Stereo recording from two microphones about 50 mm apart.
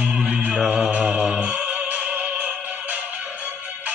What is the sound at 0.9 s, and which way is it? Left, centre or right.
Music, right.